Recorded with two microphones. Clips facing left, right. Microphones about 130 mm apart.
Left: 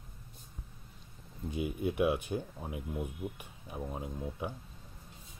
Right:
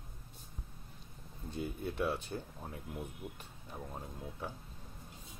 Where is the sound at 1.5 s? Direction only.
10° left (ahead or behind).